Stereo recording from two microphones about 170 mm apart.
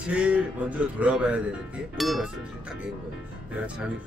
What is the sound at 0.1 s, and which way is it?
Speech, 5° right (ahead or behind).